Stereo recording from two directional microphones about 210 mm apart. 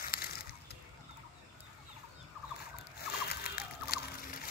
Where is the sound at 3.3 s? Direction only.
45° left (ahead or behind).